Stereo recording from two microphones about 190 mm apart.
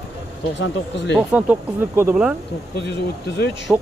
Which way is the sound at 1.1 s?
5° right (ahead or behind).